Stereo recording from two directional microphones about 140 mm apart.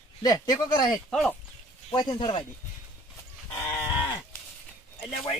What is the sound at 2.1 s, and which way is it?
Speech, 40° left (ahead or behind).